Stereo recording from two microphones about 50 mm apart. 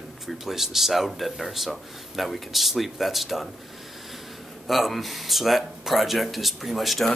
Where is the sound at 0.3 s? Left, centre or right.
Centre.